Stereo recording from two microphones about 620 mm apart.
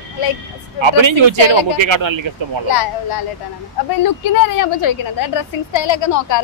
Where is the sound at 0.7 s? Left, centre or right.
Right.